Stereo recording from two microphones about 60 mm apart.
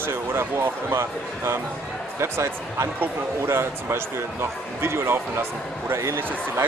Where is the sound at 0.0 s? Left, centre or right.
Right.